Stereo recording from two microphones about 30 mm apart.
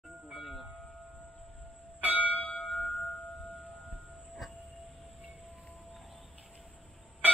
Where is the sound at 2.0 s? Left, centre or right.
Right.